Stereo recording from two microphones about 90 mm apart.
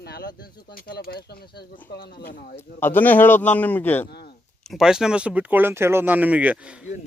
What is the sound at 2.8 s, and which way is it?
A man's voice, 20° left (ahead or behind).